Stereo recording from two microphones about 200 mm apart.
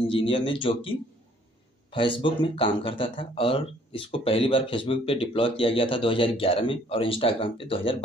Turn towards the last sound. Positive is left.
turn(degrees=25)  # may be behind; listen again after turning